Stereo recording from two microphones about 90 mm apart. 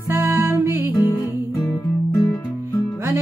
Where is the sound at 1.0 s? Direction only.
40° left (ahead or behind).